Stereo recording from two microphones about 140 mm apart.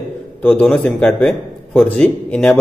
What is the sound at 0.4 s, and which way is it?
A man's voice, 10° left (ahead or behind).